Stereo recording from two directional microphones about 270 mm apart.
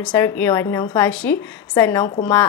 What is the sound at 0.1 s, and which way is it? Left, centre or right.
A woman's voice, centre.